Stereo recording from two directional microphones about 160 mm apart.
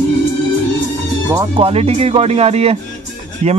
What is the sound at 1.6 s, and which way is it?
Speech, 40° right (ahead or behind).